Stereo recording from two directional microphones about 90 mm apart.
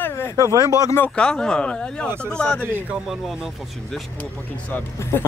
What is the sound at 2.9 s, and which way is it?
Speech, 5° right (ahead or behind).